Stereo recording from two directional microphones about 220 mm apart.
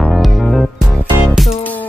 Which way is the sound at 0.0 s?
Centre (ahead or behind).